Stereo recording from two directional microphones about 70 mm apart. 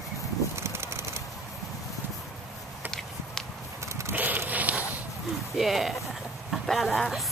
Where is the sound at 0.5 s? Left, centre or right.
Right.